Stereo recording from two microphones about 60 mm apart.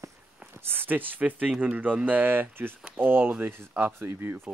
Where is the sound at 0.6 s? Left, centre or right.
Right.